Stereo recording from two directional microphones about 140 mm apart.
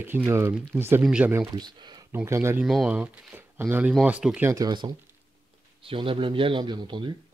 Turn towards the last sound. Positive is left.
turn(degrees=-35)  # may be behind; listen again after turning